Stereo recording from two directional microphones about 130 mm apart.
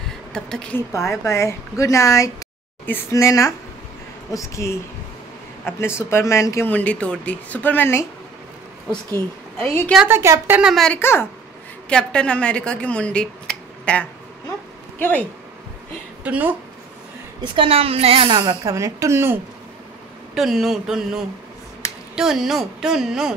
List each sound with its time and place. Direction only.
0.3 s speech: 5° left (ahead or behind)
0.7 s a woman's voice: 20° left (ahead or behind)
9.6 s speech: 15° left (ahead or behind)
10.0 s speech: 20° right (ahead or behind)
10.6 s speech: centre (ahead or behind)
10.9 s speech: 15° left (ahead or behind)
16.3 s speech: 15° right (ahead or behind)
17.4 s a woman's voice: 45° right (ahead or behind)
18.7 s speech: 25° right (ahead or behind)
20.3 s speech: centre (ahead or behind)